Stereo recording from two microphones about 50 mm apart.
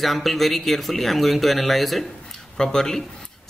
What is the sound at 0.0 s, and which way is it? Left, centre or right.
Speech, centre.